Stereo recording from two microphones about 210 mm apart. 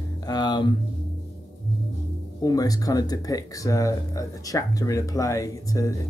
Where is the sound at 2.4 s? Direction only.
15° left (ahead or behind).